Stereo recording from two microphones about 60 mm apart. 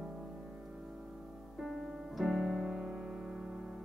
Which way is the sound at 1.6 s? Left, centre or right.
Centre.